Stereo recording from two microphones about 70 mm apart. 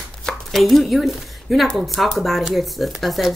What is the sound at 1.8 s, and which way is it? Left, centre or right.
Speech, centre.